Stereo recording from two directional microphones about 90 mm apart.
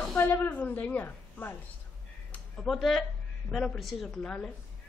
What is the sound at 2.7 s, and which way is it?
A woman's voice, centre (ahead or behind).